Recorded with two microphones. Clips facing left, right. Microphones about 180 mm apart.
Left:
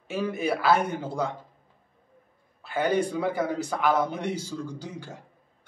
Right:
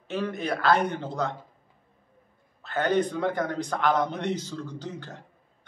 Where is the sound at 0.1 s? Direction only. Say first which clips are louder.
Left 2 dB; 10° left (ahead or behind).